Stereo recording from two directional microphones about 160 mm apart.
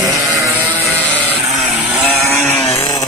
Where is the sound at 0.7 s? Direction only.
10° left (ahead or behind).